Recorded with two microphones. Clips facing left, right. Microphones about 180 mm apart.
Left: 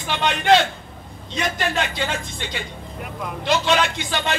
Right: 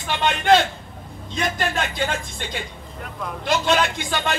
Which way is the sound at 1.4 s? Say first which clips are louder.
Left 1 dB; 45° right (ahead or behind).